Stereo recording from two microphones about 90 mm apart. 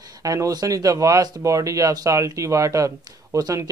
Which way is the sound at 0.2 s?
40° right (ahead or behind).